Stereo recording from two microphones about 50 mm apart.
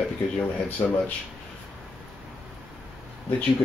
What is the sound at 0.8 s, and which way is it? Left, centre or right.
Speech, left.